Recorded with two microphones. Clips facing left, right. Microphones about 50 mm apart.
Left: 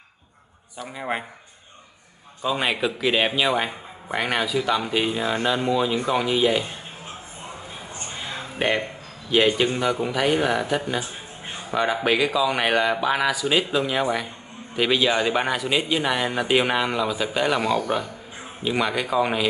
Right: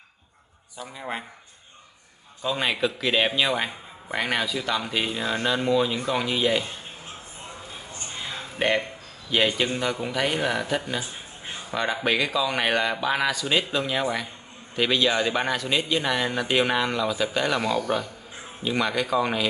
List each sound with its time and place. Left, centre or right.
0.9 s speech: left
2.4 s a man's voice: centre
8.5 s a man's voice: centre